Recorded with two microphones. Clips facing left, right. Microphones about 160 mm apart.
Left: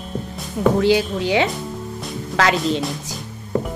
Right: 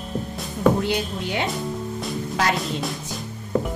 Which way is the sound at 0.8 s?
90° left.